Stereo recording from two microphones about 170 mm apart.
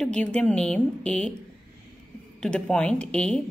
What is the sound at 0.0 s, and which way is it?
A woman's voice, 5° left (ahead or behind).